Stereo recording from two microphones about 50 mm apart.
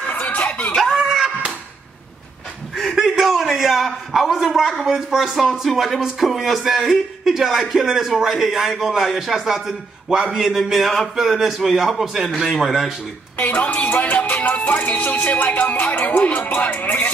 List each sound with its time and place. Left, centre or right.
0.1 s a sound: left
0.9 s slap: centre
2.7 s a man's voice: centre
10.7 s a man's voice: centre
13.4 s speech: left